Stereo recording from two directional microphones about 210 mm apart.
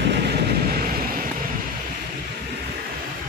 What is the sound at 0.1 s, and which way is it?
Vehicle, 50° right (ahead or behind).